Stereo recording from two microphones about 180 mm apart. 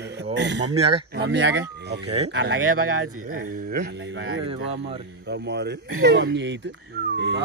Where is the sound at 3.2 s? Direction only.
50° right (ahead or behind).